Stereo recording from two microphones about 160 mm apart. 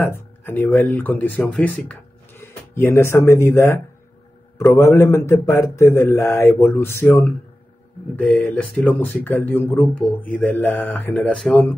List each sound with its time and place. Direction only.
0.0 s speech: 10° left (ahead or behind)
11.3 s speech: centre (ahead or behind)